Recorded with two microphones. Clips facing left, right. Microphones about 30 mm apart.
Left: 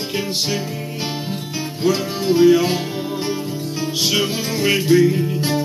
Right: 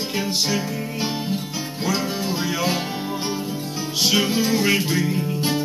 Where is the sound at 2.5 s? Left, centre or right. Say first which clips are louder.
Left 8 dB; centre.